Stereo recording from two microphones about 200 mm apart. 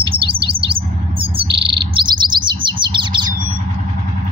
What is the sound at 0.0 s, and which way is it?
Bird, 25° right (ahead or behind).